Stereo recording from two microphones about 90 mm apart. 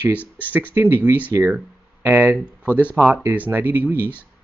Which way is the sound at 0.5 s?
20° right (ahead or behind).